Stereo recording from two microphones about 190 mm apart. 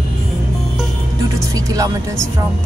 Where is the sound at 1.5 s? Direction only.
20° right (ahead or behind).